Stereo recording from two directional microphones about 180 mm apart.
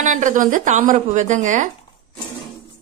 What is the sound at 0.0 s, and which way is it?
Speech, 45° right (ahead or behind).